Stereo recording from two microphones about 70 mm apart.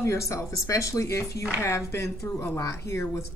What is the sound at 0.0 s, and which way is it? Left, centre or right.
A woman's voice, left.